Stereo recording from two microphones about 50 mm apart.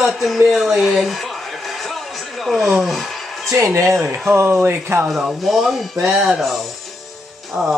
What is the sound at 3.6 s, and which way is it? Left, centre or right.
Speech, right.